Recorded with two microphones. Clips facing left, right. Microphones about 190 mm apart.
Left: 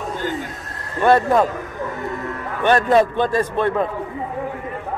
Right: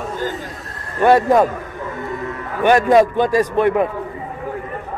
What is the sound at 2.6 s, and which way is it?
A man's voice, 15° right (ahead or behind).